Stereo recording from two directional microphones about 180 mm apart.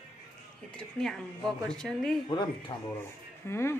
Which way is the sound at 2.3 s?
25° left (ahead or behind).